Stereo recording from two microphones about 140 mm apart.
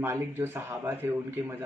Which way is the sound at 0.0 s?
15° right (ahead or behind).